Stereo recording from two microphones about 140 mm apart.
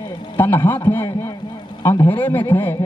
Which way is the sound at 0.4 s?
15° left (ahead or behind).